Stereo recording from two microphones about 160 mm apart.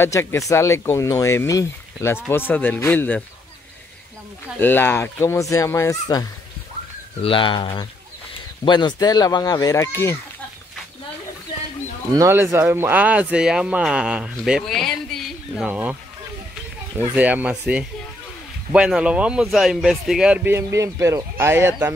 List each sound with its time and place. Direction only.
0.0 s speech: 15° left (ahead or behind)
4.6 s speech: 15° left (ahead or behind)
7.2 s speech: 30° left (ahead or behind)
12.2 s speech: 20° right (ahead or behind)